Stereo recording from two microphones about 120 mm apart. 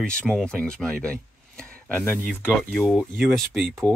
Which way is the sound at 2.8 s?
Centre (ahead or behind).